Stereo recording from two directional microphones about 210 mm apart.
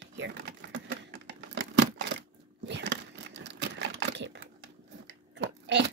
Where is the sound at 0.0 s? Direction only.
55° right (ahead or behind).